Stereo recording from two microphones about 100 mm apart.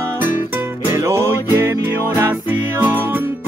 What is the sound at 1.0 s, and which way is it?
Music, 25° right (ahead or behind).